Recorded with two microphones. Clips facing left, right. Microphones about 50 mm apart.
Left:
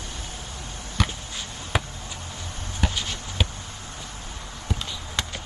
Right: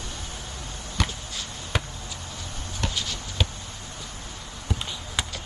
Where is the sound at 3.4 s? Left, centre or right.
Centre.